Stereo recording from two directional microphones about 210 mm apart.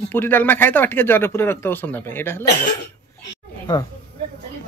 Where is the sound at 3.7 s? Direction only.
20° left (ahead or behind).